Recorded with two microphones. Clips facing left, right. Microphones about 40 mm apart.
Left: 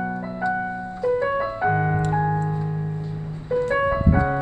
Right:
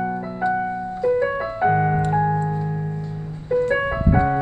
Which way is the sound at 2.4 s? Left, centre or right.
Centre.